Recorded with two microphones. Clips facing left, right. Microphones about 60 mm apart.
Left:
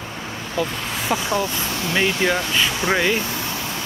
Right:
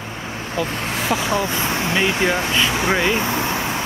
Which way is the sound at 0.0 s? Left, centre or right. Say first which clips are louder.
Right 2 dB; right.